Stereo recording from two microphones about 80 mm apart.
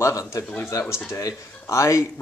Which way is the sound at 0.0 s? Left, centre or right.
Left.